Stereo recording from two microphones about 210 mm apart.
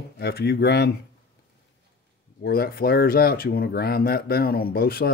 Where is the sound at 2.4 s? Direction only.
45° left (ahead or behind).